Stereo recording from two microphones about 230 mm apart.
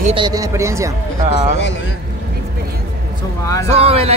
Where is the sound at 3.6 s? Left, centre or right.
Right.